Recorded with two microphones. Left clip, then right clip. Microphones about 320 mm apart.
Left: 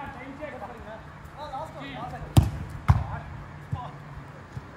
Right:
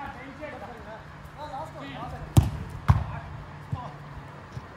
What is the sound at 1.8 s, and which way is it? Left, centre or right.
Basketball bounce, centre.